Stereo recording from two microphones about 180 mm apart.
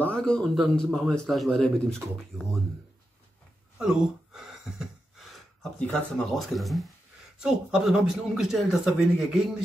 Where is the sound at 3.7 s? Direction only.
5° right (ahead or behind).